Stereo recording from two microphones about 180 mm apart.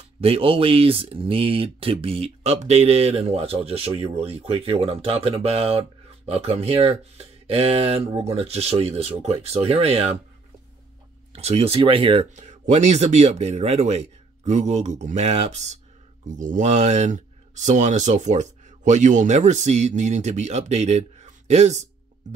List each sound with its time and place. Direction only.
0.2 s speech: 30° right (ahead or behind)
11.3 s speech: 35° right (ahead or behind)